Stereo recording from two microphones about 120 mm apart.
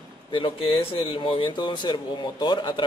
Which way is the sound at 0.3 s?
50° left (ahead or behind).